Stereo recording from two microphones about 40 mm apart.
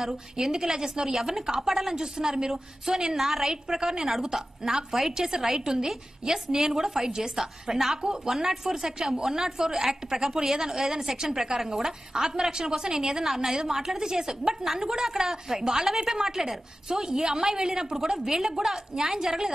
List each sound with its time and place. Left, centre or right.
0.0 s a woman's voice: centre